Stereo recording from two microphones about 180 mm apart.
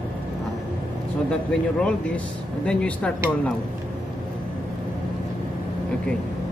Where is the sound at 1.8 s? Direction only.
5° left (ahead or behind).